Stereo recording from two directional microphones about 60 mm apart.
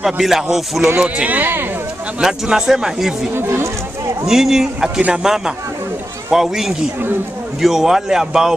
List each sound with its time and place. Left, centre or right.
0.0 s speech: centre
0.8 s speech: right
2.1 s speech: centre
3.3 s speech: right
4.3 s speech: centre